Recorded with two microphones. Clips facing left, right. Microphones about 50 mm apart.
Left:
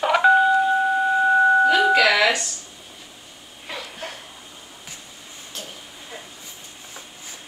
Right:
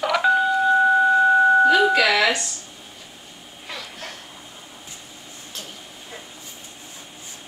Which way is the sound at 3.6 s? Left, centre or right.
Centre.